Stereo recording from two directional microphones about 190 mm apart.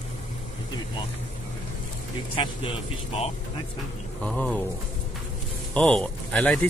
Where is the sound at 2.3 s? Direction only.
25° left (ahead or behind).